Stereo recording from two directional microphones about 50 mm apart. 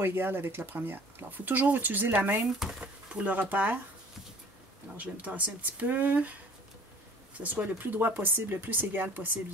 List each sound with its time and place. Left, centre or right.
0.0 s speech: right
2.8 s speech: right
4.9 s speech: right
7.3 s speech: right